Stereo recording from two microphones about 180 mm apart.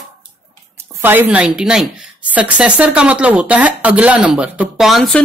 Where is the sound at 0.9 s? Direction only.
10° right (ahead or behind).